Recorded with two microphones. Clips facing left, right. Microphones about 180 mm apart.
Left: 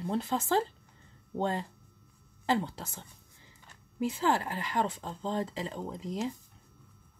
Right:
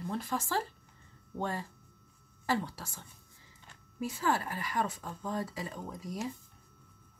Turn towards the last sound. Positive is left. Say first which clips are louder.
# left 4 dB
turn(degrees=20)  # may be behind; listen again after turning